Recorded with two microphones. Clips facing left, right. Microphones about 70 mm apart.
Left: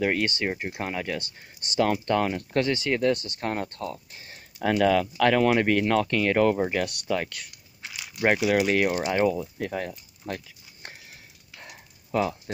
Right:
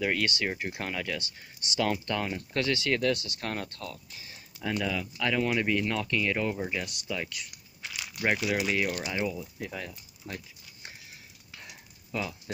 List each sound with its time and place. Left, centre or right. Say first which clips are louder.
0.0 s speech: left 4 dB; left
1.6 s speech: left 5 dB; left
2.5 s speech: left 2 dB; left
4.6 s speech: left 10 dB; left
8.5 s speech: left 6 dB; left
9.1 s speech: left 8 dB; left
11.6 s a sound: left 3 dB; left